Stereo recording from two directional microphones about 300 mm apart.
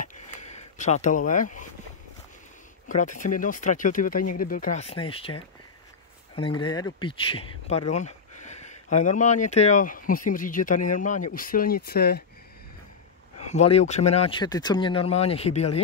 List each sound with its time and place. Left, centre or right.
0.4 s speech: left
2.9 s speech: left
13.5 s speech: left